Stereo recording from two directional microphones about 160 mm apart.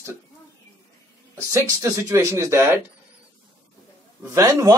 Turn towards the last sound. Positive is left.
turn(degrees=-20)  # may be behind; listen again after turning